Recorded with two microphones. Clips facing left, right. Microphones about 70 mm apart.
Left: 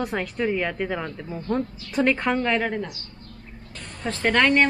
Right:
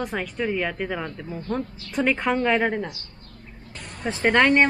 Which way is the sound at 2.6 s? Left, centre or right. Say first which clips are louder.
Right 2 dB; centre.